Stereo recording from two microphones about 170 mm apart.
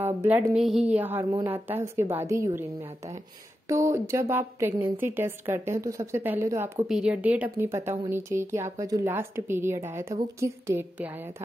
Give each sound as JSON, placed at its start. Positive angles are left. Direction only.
{"t": 0.0, "sound": "speech", "side_deg": -10}
{"t": 3.6, "sound": "speech", "side_deg": -15}
{"t": 6.9, "sound": "speech", "side_deg": -5}